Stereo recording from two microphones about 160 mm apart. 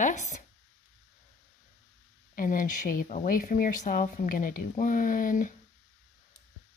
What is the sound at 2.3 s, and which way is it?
Speech, 55° left (ahead or behind).